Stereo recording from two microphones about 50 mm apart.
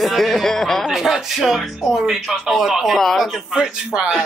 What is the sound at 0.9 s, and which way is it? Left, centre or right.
Speech, centre.